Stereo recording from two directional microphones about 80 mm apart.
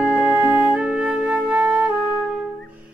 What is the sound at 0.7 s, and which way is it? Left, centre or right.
Music, centre.